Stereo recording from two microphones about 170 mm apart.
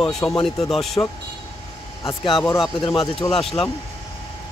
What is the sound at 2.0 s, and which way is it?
Speech, 30° left (ahead or behind).